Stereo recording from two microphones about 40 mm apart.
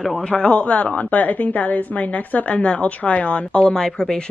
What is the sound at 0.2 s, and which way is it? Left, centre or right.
Speech, centre.